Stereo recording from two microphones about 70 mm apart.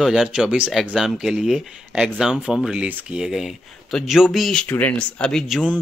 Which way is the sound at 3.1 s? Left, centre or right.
Centre.